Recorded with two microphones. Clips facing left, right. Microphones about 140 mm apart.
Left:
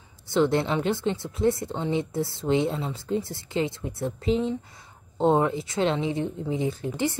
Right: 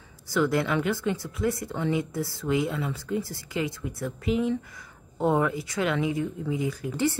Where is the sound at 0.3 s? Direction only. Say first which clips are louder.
Left 2 dB; 25° left (ahead or behind).